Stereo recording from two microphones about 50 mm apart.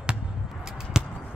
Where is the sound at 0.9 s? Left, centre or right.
Centre.